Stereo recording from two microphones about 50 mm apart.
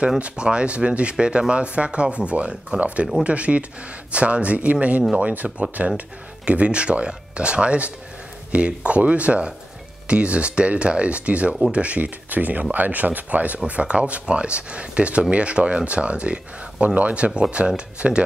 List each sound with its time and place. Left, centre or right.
0.2 s speech: right